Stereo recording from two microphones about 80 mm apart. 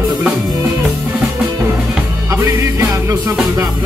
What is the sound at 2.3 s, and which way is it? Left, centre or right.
Music, right.